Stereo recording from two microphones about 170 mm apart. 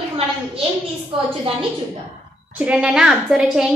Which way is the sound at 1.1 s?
30° right (ahead or behind).